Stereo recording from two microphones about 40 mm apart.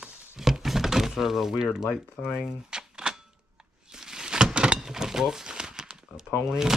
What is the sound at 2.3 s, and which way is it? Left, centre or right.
Typewriter, centre.